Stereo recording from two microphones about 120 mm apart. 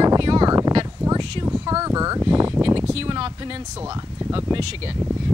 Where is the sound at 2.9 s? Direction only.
50° right (ahead or behind).